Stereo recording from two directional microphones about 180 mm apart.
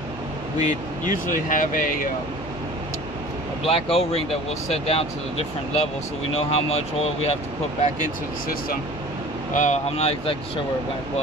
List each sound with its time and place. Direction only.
0.6 s speech: 45° left (ahead or behind)
3.6 s speech: 35° left (ahead or behind)
7.8 s speech: 50° left (ahead or behind)